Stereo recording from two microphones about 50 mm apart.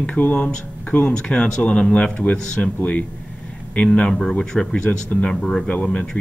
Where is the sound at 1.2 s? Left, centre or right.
Left.